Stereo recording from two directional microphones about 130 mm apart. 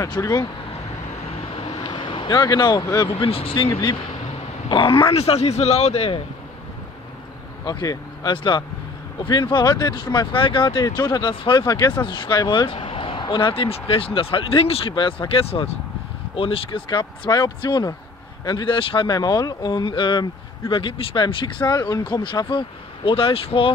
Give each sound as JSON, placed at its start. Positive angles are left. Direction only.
{"t": 0.2, "sound": "speech", "side_deg": 30}
{"t": 1.5, "sound": "vehicle", "side_deg": 40}
{"t": 3.1, "sound": "speech", "side_deg": 45}
{"t": 4.6, "sound": "speech", "side_deg": 40}
{"t": 7.6, "sound": "speech", "side_deg": 30}